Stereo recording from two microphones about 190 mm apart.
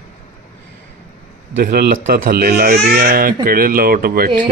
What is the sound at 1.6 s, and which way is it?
Speech, 50° right (ahead or behind).